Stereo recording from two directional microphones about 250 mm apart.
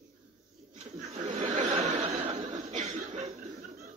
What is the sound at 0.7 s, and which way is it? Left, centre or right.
Chuckle, right.